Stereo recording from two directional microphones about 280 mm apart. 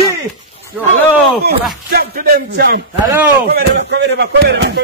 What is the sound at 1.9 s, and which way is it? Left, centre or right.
Speech, right.